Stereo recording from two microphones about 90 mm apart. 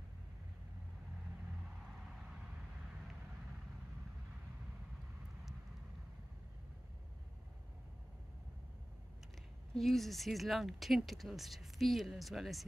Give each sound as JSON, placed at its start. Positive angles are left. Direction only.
{"t": 9.8, "sound": "speech", "side_deg": 0}